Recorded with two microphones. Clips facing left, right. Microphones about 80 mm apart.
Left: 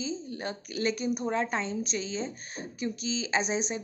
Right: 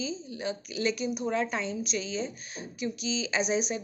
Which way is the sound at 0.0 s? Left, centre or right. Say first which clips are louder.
Even; left.